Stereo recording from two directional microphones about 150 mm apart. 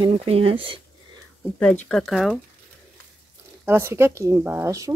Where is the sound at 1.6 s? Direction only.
5° left (ahead or behind).